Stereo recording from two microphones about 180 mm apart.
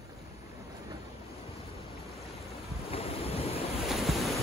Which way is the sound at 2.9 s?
35° left (ahead or behind).